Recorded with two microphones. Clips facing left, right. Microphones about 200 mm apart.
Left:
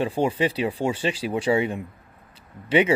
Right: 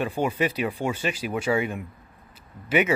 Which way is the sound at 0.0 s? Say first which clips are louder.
Left 2 dB; 30° left (ahead or behind).